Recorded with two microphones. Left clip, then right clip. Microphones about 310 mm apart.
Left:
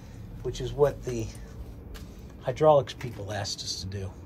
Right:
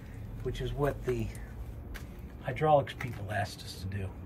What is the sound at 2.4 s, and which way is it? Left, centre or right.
Speech, centre.